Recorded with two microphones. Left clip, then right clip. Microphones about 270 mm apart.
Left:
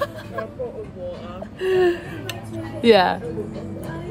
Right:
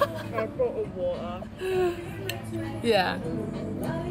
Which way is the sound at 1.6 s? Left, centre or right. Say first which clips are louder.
Left 8 dB; left.